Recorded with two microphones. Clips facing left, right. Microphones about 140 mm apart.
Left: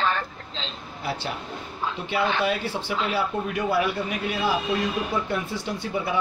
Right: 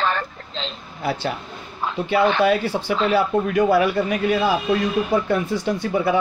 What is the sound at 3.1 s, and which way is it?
Speech, 45° right (ahead or behind).